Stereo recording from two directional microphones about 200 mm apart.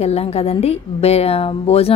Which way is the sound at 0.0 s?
30° left (ahead or behind).